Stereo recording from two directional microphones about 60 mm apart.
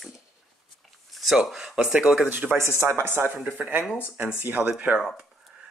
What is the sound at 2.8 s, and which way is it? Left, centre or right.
Speech, right.